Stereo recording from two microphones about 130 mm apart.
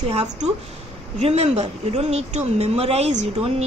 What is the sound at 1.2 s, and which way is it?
A woman's voice, 55° right (ahead or behind).